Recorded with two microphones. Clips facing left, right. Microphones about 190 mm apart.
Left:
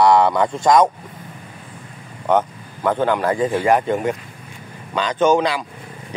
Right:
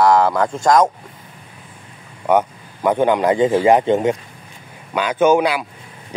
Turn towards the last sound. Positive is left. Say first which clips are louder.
# right 2 dB
turn(degrees=-10)  # may be behind; listen again after turning